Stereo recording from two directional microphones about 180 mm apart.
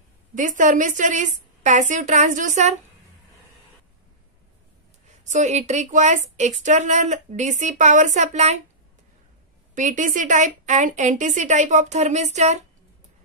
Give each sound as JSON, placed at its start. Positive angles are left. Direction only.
{"t": 0.3, "sound": "a woman's voice", "side_deg": -45}
{"t": 5.2, "sound": "speech", "side_deg": -40}
{"t": 9.8, "sound": "a woman's voice", "side_deg": -45}